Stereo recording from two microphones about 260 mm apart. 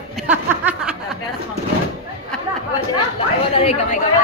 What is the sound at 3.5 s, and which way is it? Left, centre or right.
Speech, left.